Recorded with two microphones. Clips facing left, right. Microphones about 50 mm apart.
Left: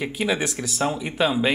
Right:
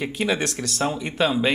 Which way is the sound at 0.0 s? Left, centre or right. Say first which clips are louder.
Even; centre.